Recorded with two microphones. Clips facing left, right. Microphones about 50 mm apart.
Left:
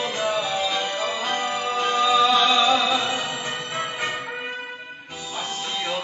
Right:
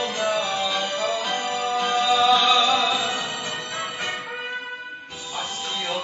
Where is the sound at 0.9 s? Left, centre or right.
Left; by 2.8 s centre.